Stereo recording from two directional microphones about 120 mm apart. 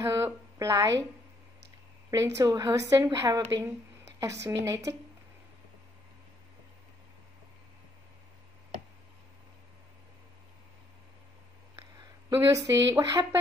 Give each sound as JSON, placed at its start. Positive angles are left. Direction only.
{"t": 0.0, "sound": "speech", "side_deg": -25}
{"t": 2.0, "sound": "speech", "side_deg": -25}
{"t": 12.3, "sound": "speech", "side_deg": -25}